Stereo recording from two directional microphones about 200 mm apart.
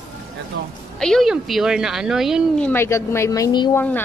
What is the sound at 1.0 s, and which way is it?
A woman's voice, centre (ahead or behind).